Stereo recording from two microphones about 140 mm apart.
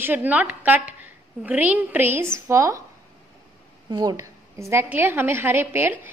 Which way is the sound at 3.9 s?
30° right (ahead or behind).